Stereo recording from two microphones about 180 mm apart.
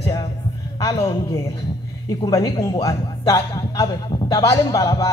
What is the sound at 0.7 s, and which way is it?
A man's voice, 20° left (ahead or behind).